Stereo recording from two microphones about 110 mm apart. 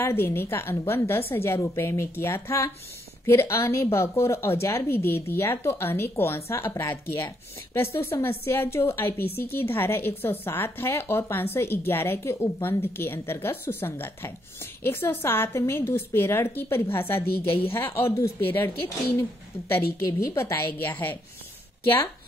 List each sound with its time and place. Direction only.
0.0 s a woman's voice: 20° left (ahead or behind)
19.7 s a woman's voice: 25° left (ahead or behind)